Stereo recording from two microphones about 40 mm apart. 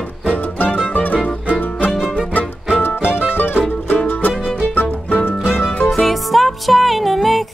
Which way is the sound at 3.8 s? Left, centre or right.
Left.